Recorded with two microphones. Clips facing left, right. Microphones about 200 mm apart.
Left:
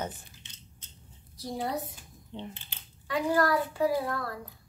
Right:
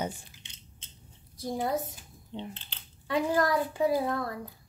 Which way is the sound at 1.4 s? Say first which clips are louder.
Right 3 dB; 50° right (ahead or behind).